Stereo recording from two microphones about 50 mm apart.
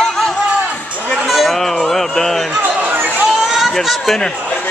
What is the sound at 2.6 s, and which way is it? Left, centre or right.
Chatter, right.